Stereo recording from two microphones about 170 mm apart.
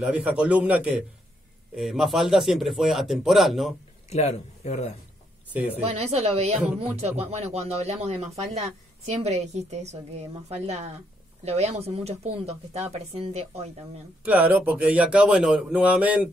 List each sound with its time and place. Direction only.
0.0 s a man's voice: 10° right (ahead or behind)
4.1 s speech: 40° left (ahead or behind)
5.9 s speech: 40° right (ahead or behind)
14.2 s a man's voice: 10° right (ahead or behind)